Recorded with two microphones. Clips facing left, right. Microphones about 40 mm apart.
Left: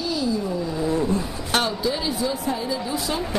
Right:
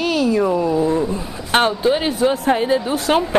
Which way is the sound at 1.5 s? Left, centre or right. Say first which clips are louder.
Right 8 dB; right.